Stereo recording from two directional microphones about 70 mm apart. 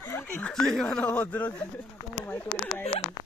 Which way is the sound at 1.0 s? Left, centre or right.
Centre.